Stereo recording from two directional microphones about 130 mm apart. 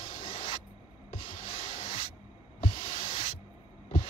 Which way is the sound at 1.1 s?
45° left (ahead or behind).